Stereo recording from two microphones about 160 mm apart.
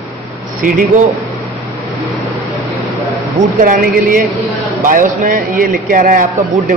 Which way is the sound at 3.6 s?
60° right (ahead or behind).